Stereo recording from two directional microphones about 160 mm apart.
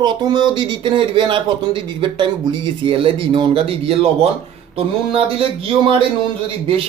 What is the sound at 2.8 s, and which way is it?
Speech, 35° right (ahead or behind).